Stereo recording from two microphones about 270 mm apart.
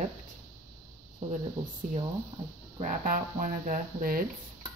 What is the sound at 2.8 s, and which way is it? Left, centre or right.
Speech, right.